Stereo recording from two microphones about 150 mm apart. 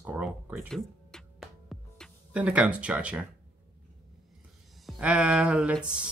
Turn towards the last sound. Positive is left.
turn(degrees=-5)  # may be behind; listen again after turning